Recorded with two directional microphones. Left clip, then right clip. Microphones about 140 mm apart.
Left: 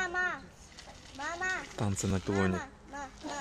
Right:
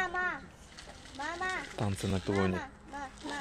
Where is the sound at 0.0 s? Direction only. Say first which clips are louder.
Left 1 dB; 40° left (ahead or behind).